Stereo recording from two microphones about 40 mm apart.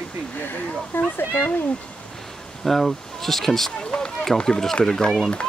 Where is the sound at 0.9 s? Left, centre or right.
Left.